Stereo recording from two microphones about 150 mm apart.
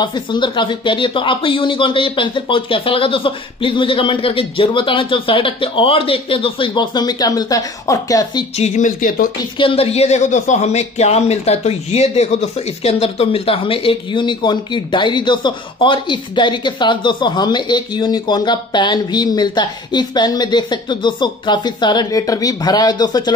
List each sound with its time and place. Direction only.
0.0 s speech: 30° left (ahead or behind)
8.5 s speech: 50° left (ahead or behind); by 9.3 s 65° left (ahead or behind)
9.6 s speech: 40° left (ahead or behind)